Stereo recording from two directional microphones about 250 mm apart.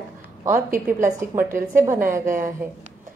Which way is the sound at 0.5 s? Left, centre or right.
Right.